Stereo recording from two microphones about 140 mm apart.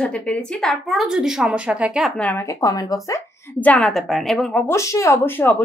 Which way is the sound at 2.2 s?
20° left (ahead or behind).